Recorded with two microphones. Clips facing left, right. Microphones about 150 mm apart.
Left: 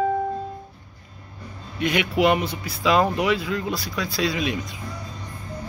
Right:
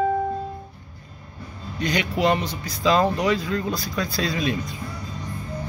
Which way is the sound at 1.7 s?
35° right (ahead or behind).